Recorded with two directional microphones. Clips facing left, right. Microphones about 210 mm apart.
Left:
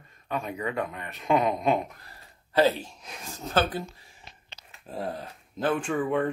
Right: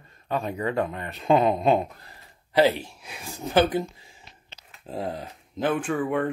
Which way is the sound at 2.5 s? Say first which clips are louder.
Right 2 dB; 15° right (ahead or behind).